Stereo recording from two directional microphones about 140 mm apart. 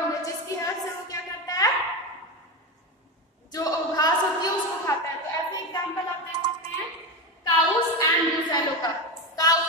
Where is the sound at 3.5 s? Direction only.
25° left (ahead or behind).